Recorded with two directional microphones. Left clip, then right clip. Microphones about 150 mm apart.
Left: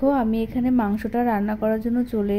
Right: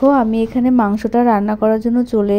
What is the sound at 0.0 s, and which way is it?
A woman's voice, 35° right (ahead or behind).